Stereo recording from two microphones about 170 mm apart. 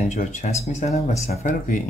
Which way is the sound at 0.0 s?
45° left (ahead or behind).